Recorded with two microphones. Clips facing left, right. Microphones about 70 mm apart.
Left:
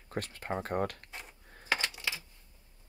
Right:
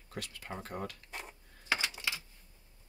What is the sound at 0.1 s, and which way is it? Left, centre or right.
Speech, left.